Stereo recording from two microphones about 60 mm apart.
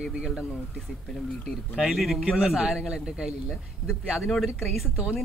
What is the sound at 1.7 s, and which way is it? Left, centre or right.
A man's voice, centre.